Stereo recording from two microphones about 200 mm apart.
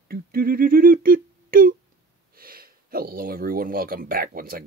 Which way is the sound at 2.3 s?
45° right (ahead or behind).